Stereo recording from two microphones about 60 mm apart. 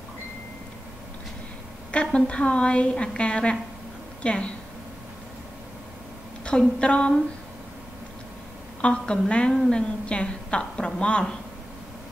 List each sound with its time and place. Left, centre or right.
1.9 s a woman's voice: centre
6.8 s a woman's voice: centre
8.8 s a woman's voice: centre